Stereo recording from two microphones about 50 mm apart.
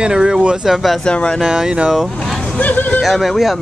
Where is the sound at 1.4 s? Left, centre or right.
Centre.